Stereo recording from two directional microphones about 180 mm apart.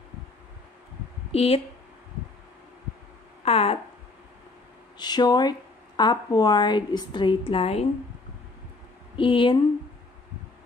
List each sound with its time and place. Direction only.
1.3 s speech: 35° left (ahead or behind)
3.4 s speech: 35° left (ahead or behind)
4.9 s speech: 25° left (ahead or behind)
9.1 s speech: 30° left (ahead or behind)